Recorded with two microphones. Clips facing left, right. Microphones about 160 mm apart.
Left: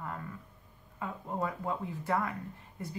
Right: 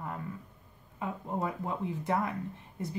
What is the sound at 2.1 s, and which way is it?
Speech, 20° right (ahead or behind).